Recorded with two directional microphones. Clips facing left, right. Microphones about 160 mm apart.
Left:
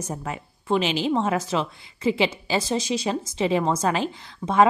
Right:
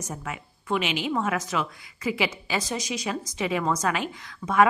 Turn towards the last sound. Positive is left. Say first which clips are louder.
# left 2 dB
turn(degrees=30)  # may be behind; listen again after turning